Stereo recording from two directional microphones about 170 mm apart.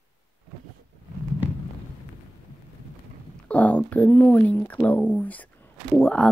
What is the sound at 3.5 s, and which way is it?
Speech, 10° left (ahead or behind).